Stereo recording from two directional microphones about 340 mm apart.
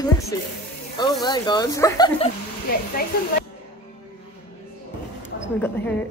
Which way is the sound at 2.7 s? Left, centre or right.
Left.